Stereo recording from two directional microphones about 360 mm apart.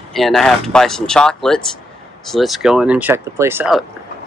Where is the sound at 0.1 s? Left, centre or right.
Centre.